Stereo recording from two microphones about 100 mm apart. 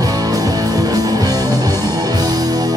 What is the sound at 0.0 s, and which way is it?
Music, 40° right (ahead or behind).